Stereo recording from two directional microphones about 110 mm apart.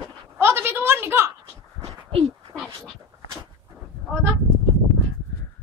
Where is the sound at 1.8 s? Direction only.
60° right (ahead or behind).